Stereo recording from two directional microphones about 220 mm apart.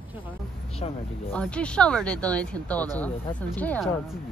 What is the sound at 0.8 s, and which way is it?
Speech, 25° left (ahead or behind).